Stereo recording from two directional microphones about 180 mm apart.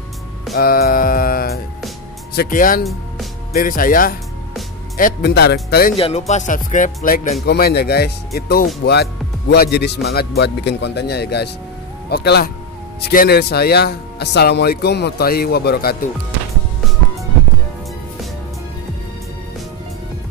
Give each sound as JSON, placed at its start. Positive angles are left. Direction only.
{"t": 0.6, "sound": "music", "side_deg": 55}
{"t": 2.3, "sound": "speech", "side_deg": 50}
{"t": 2.8, "sound": "speech", "side_deg": 0}
{"t": 3.5, "sound": "speech", "side_deg": 50}
{"t": 5.9, "sound": "speech", "side_deg": 35}
{"t": 7.4, "sound": "speech", "side_deg": 60}